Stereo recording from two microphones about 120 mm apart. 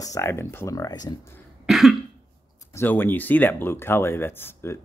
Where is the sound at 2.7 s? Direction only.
15° left (ahead or behind).